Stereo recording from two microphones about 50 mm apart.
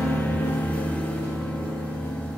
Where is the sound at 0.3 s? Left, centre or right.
Left.